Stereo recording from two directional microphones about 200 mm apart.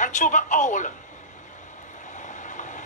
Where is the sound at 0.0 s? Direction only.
40° left (ahead or behind).